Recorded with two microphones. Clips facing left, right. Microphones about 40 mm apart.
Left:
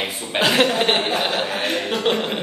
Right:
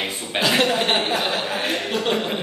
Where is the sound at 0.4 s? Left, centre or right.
Left.